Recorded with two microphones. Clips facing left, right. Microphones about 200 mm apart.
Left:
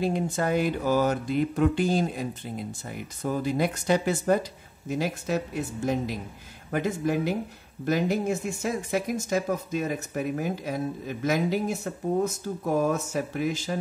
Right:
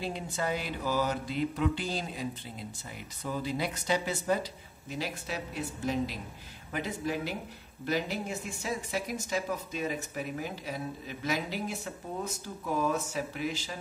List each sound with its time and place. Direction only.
0.0 s speech: 50° left (ahead or behind)